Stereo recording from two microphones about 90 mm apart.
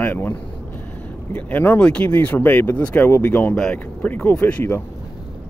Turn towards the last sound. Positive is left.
turn(degrees=20)  # may be behind; listen again after turning